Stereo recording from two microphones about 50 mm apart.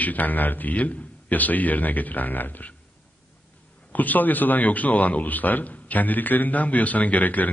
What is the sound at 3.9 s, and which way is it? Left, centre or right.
Speech, left.